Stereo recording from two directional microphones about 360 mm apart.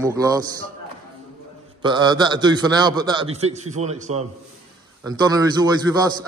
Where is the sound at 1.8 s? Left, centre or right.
Centre.